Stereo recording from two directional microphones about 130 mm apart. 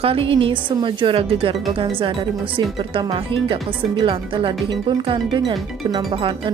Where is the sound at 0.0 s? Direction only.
45° right (ahead or behind).